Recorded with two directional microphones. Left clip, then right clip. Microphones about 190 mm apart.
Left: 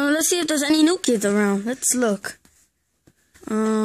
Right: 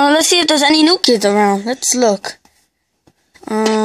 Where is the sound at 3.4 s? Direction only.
30° left (ahead or behind).